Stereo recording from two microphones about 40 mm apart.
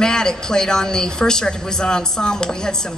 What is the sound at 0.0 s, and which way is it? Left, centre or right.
A woman's voice, centre.